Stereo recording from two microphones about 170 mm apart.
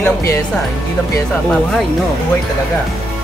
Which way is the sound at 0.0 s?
15° left (ahead or behind).